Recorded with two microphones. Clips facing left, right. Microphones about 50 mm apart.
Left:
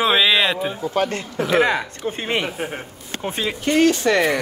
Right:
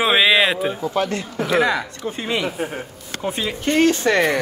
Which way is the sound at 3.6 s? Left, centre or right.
Right.